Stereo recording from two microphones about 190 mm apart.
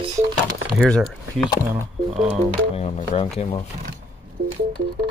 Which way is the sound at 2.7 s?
35° left (ahead or behind).